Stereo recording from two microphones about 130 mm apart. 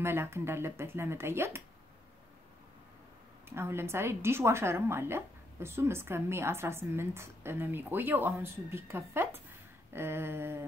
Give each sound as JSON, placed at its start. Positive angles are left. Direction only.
{"t": 0.0, "sound": "a woman's voice", "side_deg": -20}
{"t": 3.4, "sound": "a woman's voice", "side_deg": -20}
{"t": 9.9, "sound": "a sound", "side_deg": -20}